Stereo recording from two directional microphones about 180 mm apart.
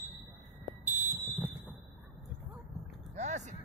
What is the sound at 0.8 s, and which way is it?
Fire alarm, 40° right (ahead or behind).